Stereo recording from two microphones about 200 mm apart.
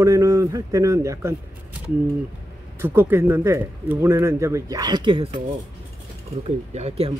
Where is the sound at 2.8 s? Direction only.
10° right (ahead or behind).